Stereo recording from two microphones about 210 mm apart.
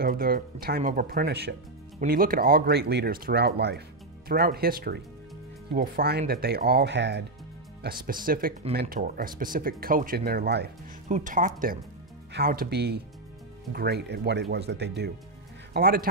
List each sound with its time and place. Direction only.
0.0 s speech: 45° right (ahead or behind)
7.8 s speech: 45° right (ahead or behind)
11.1 s speech: 35° right (ahead or behind)
12.3 s speech: 50° right (ahead or behind)